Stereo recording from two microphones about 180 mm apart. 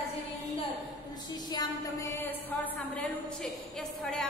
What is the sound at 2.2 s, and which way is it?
A woman's voice, 5° left (ahead or behind).